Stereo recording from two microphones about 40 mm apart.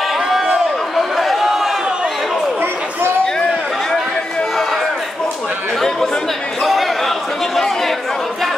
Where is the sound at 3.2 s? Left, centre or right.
Centre.